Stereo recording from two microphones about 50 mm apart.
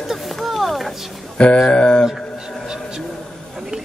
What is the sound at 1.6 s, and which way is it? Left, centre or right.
Speech, centre.